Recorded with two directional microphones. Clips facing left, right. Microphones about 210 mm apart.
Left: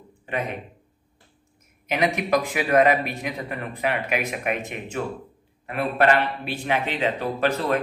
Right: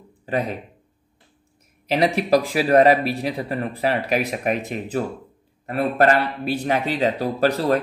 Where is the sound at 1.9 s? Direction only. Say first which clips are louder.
Right 4 dB; 35° right (ahead or behind).